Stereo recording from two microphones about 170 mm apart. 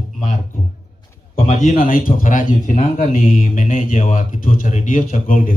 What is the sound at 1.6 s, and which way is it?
A man's voice, 55° left (ahead or behind).